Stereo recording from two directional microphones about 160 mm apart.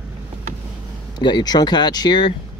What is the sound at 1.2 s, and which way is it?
Speech, 25° left (ahead or behind).